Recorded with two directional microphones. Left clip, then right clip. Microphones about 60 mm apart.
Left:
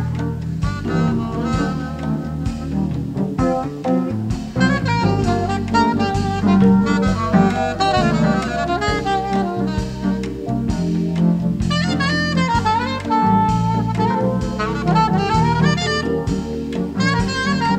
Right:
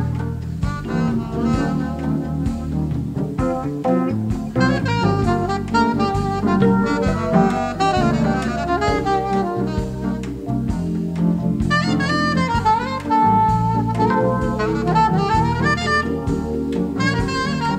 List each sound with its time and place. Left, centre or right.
0.9 s music: right
3.3 s music: right
11.1 s saxophone: right
16.7 s music: right